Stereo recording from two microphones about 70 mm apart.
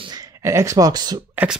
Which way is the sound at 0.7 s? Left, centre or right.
Right.